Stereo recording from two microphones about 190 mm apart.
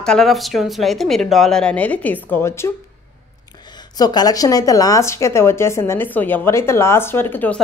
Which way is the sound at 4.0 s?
20° left (ahead or behind).